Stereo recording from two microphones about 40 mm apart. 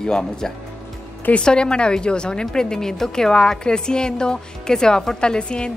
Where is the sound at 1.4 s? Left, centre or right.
Left.